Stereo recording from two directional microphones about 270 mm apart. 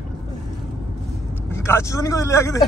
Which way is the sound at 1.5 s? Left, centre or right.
Centre.